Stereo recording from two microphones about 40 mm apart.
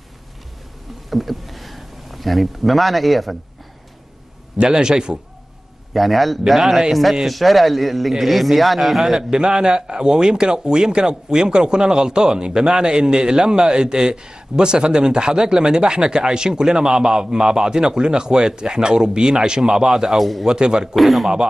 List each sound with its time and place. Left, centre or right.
1.1 s speech: centre
4.6 s speech: centre
5.9 s a man's voice: centre
9.3 s speech: centre
20.2 s a man's voice: centre
20.4 s speech: centre
20.9 s a man's voice: centre